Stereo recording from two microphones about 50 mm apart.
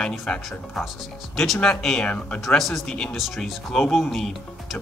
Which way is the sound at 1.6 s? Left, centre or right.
Centre.